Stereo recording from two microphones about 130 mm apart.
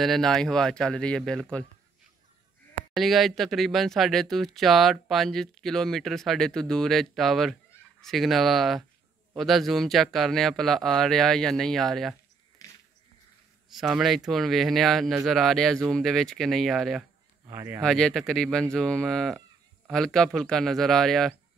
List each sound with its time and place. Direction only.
0.0 s speech: centre (ahead or behind)
2.9 s speech: centre (ahead or behind)
13.7 s speech: centre (ahead or behind)
17.5 s speech: 20° right (ahead or behind)
17.8 s speech: 5° left (ahead or behind)